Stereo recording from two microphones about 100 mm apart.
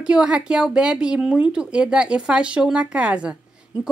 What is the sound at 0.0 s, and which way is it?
Speech, 10° right (ahead or behind).